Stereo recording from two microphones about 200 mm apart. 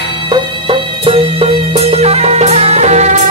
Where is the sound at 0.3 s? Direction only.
25° right (ahead or behind).